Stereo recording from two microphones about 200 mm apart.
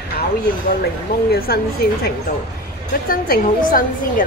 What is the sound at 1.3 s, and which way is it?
Speech, 50° left (ahead or behind).